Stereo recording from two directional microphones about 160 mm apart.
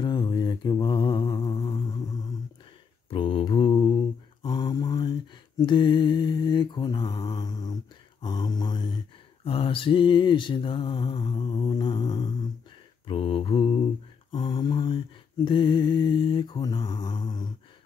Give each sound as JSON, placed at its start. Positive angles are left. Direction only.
{"t": 0.0, "sound": "mantra", "side_deg": 30}
{"t": 3.1, "sound": "mantra", "side_deg": 35}
{"t": 8.2, "sound": "a sound", "side_deg": 25}
{"t": 13.0, "sound": "mantra", "side_deg": 35}